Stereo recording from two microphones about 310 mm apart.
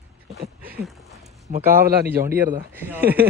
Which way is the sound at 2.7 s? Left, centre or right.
Centre.